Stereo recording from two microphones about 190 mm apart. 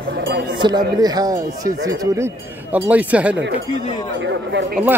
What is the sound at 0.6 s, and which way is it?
Speech, 20° right (ahead or behind).